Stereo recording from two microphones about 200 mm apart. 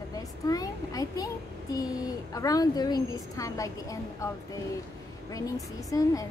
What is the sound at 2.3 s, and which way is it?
A woman's voice, 15° left (ahead or behind).